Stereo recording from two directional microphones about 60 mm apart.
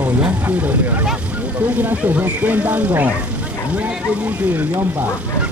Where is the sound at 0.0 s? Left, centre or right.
Right.